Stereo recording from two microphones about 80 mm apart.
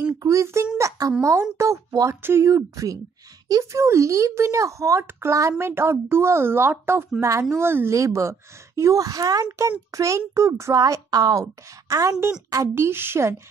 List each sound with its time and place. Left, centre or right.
0.2 s speech: right
9.5 s speech: right
11.9 s speech: right